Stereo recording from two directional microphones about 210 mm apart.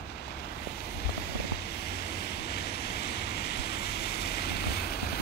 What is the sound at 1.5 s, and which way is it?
Vehicle, 50° left (ahead or behind).